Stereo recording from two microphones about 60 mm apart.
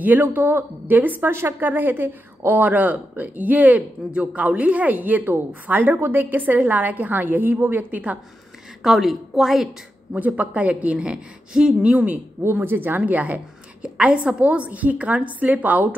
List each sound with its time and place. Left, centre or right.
0.0 s speech: right
8.8 s a woman's voice: centre
10.1 s speech: right
11.9 s speech: right
12.4 s speech: right